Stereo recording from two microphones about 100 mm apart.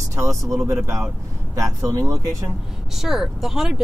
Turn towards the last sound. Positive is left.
turn(degrees=-5)  # may be behind; listen again after turning